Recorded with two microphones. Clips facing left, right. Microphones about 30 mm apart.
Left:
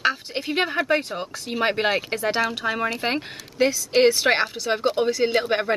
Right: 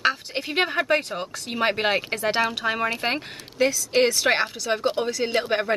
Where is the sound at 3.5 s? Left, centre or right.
Centre.